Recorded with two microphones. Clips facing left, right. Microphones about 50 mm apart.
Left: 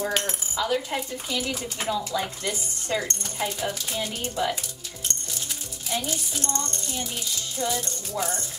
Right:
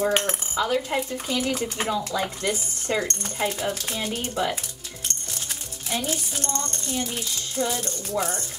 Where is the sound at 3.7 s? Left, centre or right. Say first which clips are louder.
Right 1 dB; right.